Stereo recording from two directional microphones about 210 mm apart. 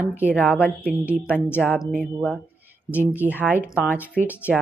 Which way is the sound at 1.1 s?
10° left (ahead or behind).